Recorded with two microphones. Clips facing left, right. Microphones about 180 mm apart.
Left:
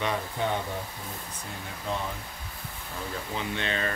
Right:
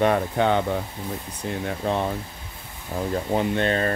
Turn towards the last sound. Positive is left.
turn(degrees=-45)  # may be behind; listen again after turning